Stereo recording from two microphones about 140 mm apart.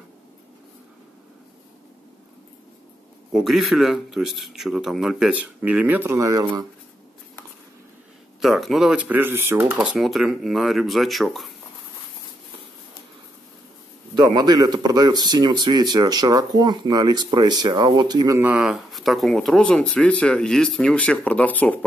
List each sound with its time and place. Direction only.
3.3 s speech: centre (ahead or behind); by 6.6 s 25° right (ahead or behind)
8.4 s speech: centre (ahead or behind)
14.1 s speech: 30° right (ahead or behind)
18.4 s speech: 5° right (ahead or behind); by 21.7 s 10° left (ahead or behind)